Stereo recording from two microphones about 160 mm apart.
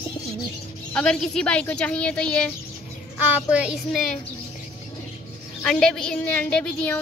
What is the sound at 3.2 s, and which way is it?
Child singing, 10° right (ahead or behind).